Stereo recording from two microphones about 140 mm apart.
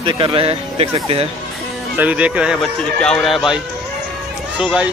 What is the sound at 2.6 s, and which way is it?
Speech, 5° left (ahead or behind).